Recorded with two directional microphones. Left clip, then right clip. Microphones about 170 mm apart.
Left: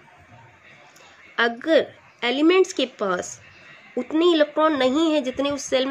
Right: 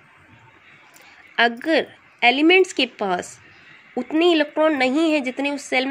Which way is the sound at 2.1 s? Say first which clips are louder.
Right 4 dB; 10° right (ahead or behind).